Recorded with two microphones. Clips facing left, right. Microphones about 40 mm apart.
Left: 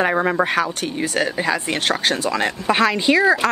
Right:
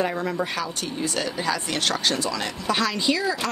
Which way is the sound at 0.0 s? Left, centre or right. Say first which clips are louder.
Left 7 dB; left.